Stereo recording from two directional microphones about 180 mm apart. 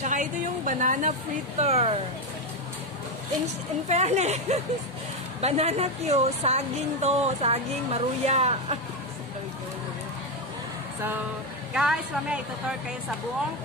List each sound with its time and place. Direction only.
0.0 s a woman's voice: 45° right (ahead or behind)
3.9 s a woman's voice: 40° right (ahead or behind)
11.7 s a man's voice: 5° right (ahead or behind)